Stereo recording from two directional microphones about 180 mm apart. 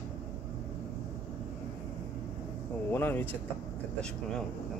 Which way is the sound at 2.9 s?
10° left (ahead or behind).